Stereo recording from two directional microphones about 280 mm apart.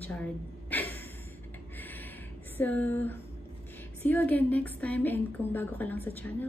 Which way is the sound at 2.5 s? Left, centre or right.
Centre.